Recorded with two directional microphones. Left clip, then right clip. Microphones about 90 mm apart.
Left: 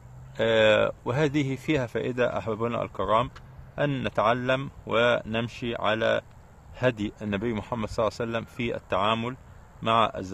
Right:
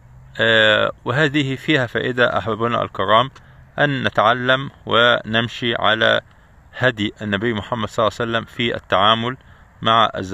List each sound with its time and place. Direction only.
0.3 s speech: 20° right (ahead or behind)
1.8 s speech: 40° right (ahead or behind)
4.1 s speech: 50° right (ahead or behind)